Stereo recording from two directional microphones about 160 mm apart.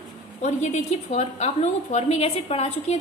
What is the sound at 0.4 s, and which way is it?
A woman's voice, 45° left (ahead or behind).